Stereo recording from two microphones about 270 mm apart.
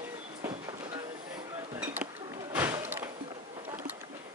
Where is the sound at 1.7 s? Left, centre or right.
Centre.